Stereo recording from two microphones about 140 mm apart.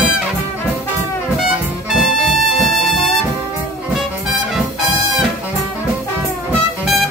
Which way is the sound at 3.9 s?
5° right (ahead or behind).